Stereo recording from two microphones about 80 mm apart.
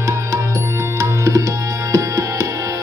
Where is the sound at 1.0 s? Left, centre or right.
Right.